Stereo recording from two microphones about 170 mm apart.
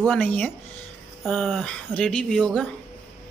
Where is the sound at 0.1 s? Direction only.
10° left (ahead or behind).